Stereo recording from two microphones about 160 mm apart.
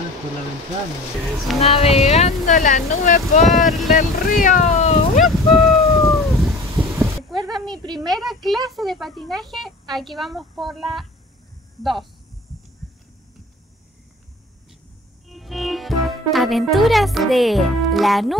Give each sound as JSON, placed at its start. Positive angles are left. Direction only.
{"t": 1.6, "sound": "speech", "side_deg": 40}
{"t": 2.5, "sound": "speech", "side_deg": 55}
{"t": 3.4, "sound": "speech", "side_deg": 0}
{"t": 3.9, "sound": "speech", "side_deg": 60}
{"t": 5.2, "sound": "a sound", "side_deg": 0}
{"t": 6.5, "sound": "a sound", "side_deg": -20}
{"t": 7.5, "sound": "speech", "side_deg": 0}
{"t": 15.2, "sound": "a child's voice", "side_deg": 0}